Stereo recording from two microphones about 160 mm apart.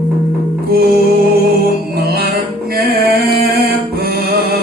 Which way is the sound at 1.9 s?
75° right (ahead or behind).